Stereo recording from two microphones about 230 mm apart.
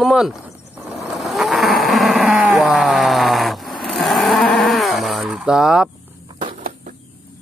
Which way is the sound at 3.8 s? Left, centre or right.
Centre.